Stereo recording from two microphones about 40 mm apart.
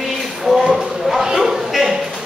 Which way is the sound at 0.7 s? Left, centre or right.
Centre.